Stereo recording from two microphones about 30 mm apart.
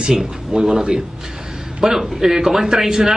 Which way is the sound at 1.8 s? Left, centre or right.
Centre.